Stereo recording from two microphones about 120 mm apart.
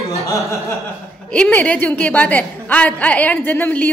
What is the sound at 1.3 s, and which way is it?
A woman's voice, 10° left (ahead or behind).